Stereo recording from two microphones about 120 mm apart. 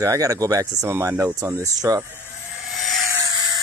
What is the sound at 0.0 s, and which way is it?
Speech, 25° right (ahead or behind).